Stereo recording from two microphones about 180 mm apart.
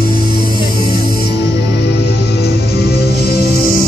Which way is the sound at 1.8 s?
70° left (ahead or behind).